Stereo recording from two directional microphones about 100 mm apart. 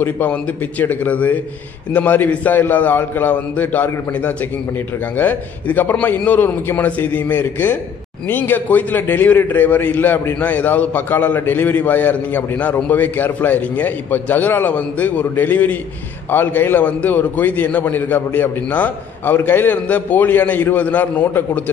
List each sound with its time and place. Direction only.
0.0 s a man's voice: 15° left (ahead or behind)